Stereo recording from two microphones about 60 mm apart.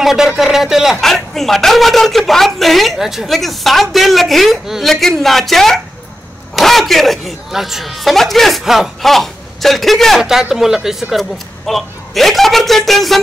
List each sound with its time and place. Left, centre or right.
0.0 s speech: centre
10.2 s speech: centre